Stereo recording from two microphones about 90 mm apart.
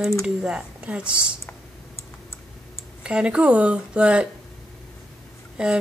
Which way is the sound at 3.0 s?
10° right (ahead or behind).